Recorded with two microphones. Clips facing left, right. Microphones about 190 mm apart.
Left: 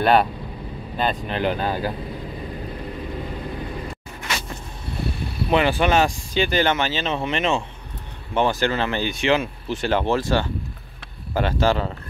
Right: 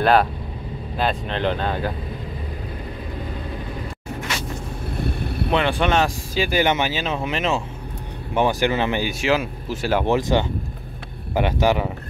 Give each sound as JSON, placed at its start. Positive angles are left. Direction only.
{"t": 0.0, "sound": "speech", "side_deg": 0}
{"t": 5.5, "sound": "speech", "side_deg": 5}